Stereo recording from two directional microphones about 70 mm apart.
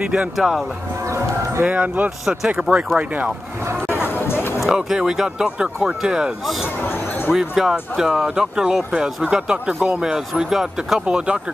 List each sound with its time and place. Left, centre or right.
0.4 s speech: centre
1.0 s livestock: right
1.6 s speech: right
2.0 s speech: centre
3.9 s music: left
4.6 s speech: centre
6.9 s a sound: left
7.3 s speech: centre